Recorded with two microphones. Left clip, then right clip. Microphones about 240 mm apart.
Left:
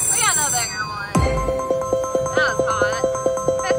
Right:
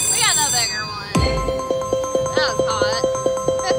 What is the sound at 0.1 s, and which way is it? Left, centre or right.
Music, centre.